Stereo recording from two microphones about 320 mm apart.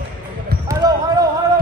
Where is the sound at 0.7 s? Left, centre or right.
Centre.